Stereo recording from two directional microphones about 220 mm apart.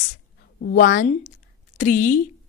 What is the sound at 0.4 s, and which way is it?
A woman's voice, 45° left (ahead or behind).